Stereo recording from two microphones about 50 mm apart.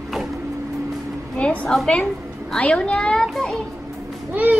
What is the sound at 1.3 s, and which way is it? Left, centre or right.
A woman's voice, left.